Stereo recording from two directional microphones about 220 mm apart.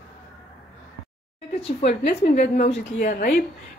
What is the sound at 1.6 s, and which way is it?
Speech, 30° left (ahead or behind).